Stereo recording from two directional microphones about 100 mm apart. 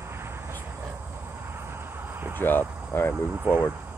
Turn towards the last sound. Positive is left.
turn(degrees=-15)  # may be behind; listen again after turning